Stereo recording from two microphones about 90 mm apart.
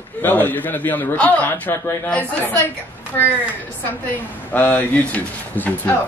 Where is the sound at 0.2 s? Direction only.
20° left (ahead or behind).